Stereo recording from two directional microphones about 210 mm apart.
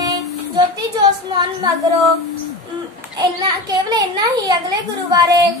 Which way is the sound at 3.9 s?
15° right (ahead or behind).